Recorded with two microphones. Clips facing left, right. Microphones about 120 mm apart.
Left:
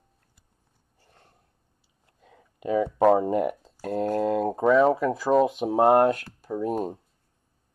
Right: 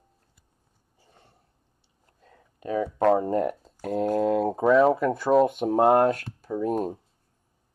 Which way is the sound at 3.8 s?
Centre (ahead or behind).